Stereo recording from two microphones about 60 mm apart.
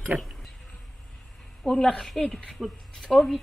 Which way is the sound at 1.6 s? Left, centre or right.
Centre.